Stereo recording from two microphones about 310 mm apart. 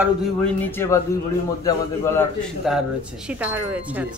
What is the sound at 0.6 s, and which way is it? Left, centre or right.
A man's voice, centre.